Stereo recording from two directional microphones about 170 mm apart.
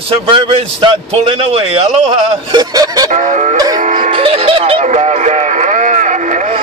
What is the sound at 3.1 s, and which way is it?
Music, 45° right (ahead or behind).